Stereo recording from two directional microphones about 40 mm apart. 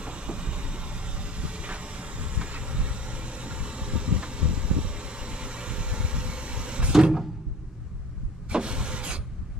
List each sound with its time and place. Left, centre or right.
0.0 s vehicle: right
6.9 s a sound: centre
8.5 s vehicle: right